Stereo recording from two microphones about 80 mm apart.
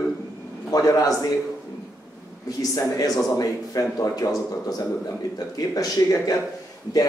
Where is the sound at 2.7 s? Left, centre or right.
Left.